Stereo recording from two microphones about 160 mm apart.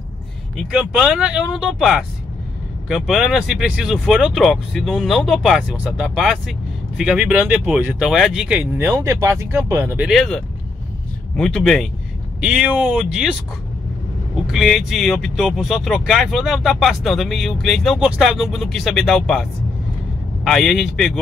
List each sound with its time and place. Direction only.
0.6 s speech: 5° right (ahead or behind)
10.0 s speech: centre (ahead or behind)
20.4 s speech: centre (ahead or behind)